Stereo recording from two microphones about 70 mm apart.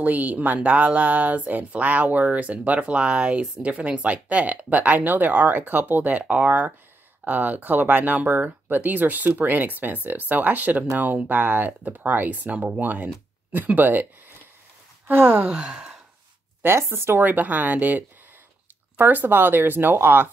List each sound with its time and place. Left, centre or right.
0.0 s speech: right
15.0 s speech: right
15.4 s speech: centre
16.6 s speech: right